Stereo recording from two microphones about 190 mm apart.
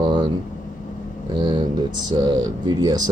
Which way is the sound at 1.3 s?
25° right (ahead or behind).